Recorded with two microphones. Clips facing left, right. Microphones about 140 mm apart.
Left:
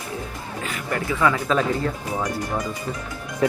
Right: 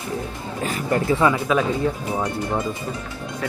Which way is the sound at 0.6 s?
35° right (ahead or behind).